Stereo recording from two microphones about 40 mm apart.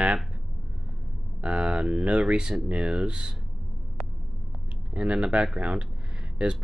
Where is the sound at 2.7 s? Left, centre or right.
Right.